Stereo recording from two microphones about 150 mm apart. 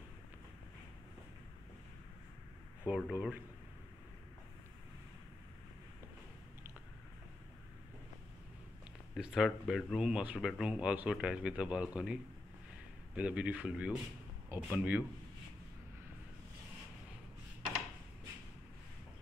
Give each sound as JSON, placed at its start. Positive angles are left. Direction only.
{"t": 2.8, "sound": "speech", "side_deg": -10}
{"t": 9.1, "sound": "speech", "side_deg": -5}